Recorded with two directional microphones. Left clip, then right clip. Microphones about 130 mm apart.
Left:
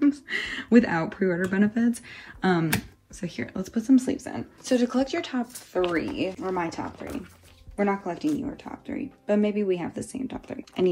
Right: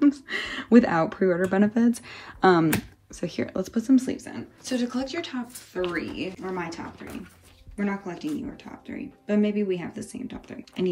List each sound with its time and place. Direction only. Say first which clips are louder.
0.0 s speech: right 1 dB; 15° right (ahead or behind)
3.7 s speech: left 1 dB; 10° right (ahead or behind)
4.3 s speech: left 4 dB; 20° left (ahead or behind)
4.6 s speech: left 5 dB; 50° left (ahead or behind)
5.9 s speech: left 3 dB; 25° left (ahead or behind)